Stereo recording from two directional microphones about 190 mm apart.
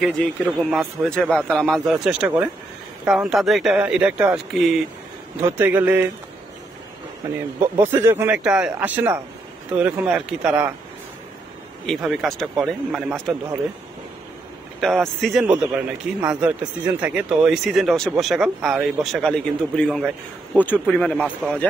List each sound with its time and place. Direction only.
0.0 s speech: centre (ahead or behind)
7.2 s a man's voice: 20° right (ahead or behind)
11.8 s speech: centre (ahead or behind)
14.8 s speech: centre (ahead or behind)